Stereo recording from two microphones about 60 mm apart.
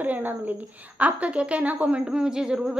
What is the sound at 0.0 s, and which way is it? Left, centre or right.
A woman's voice, right.